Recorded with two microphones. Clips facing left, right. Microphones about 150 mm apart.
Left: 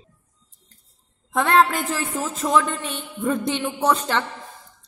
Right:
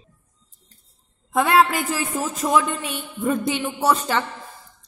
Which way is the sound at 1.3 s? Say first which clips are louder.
Right 1 dB; 10° right (ahead or behind).